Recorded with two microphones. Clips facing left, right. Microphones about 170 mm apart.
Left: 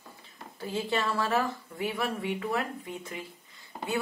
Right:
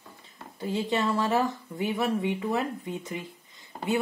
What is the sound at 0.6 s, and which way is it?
Speech, 15° right (ahead or behind).